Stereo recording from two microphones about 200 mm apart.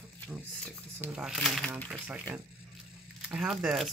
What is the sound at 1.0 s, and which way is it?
Speech, 5° right (ahead or behind).